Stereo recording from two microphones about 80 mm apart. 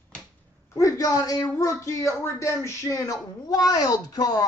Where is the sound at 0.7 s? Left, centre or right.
Left.